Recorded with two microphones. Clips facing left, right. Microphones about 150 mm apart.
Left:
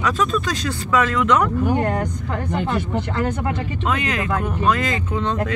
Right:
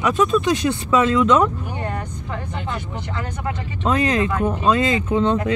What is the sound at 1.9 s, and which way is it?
Speech, 45° left (ahead or behind).